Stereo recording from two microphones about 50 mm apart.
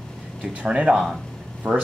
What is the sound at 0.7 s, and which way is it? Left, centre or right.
Speech, centre.